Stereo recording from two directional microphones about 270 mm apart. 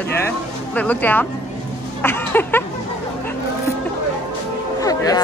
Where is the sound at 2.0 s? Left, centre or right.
Centre.